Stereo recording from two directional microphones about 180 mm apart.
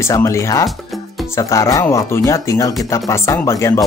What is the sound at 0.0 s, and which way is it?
Speech, 15° left (ahead or behind).